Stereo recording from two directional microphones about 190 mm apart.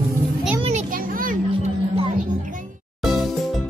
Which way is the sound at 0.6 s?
45° right (ahead or behind).